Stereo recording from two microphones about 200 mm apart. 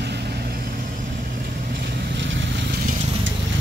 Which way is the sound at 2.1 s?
65° right (ahead or behind).